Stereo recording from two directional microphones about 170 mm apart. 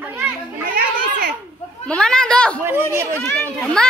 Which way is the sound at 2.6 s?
15° right (ahead or behind).